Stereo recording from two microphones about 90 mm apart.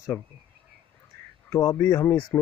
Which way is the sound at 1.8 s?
30° left (ahead or behind).